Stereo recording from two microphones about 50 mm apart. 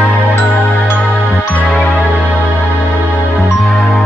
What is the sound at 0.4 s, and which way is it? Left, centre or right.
Music, left.